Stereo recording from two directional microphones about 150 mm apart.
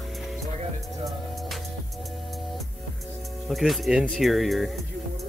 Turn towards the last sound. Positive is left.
turn(degrees=0)  # may be behind; listen again after turning